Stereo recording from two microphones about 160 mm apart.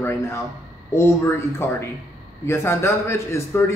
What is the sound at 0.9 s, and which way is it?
A man's voice, 15° left (ahead or behind).